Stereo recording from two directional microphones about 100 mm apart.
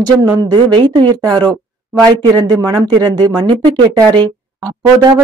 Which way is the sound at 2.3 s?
40° right (ahead or behind).